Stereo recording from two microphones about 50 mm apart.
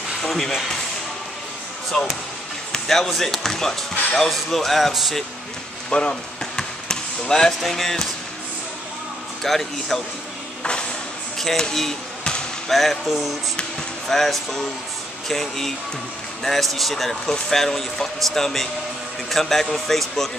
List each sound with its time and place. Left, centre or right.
0.2 s speech: centre
2.7 s speech: centre
5.9 s speech: centre
9.4 s speech: centre
10.6 s music: centre
11.3 s speech: centre